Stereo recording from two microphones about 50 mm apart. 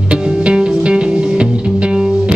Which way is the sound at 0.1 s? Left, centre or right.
Centre.